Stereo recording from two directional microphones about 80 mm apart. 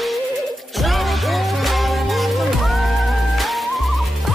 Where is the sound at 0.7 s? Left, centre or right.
Centre.